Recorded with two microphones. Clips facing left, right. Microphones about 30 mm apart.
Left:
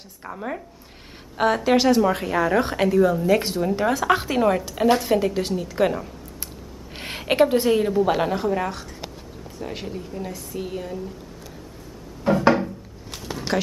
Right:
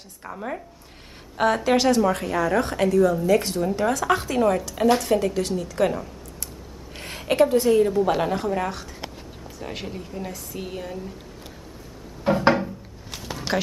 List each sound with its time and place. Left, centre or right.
0.2 s a woman's voice: centre
4.7 s a woman's voice: centre
7.0 s a woman's voice: left
7.9 s a woman's voice: centre
12.3 s a sound: centre